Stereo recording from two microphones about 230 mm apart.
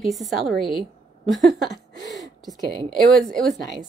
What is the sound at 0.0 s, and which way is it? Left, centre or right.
Speech, centre.